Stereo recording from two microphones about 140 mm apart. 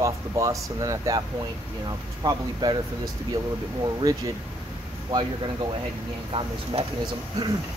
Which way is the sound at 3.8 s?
25° right (ahead or behind).